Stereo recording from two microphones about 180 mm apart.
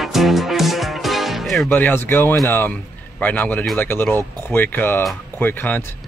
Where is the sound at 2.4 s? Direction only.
10° left (ahead or behind).